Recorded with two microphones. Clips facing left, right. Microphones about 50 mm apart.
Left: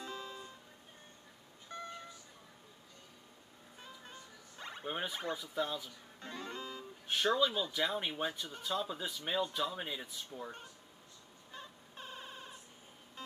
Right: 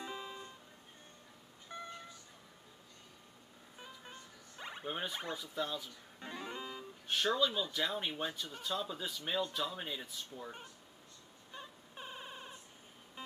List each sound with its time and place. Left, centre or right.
0.0 s music: centre
1.7 s music: centre
3.7 s music: centre
4.8 s speech: centre
6.1 s music: centre
7.1 s speech: centre
11.5 s a sound: centre